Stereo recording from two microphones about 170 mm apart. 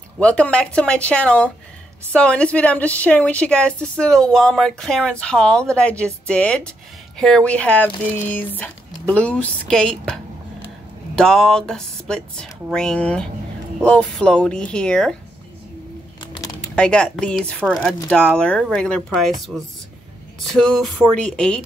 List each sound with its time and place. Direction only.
0.2 s a woman's voice: 5° left (ahead or behind)
16.2 s a sound: 25° left (ahead or behind)
16.7 s speech: 5° left (ahead or behind)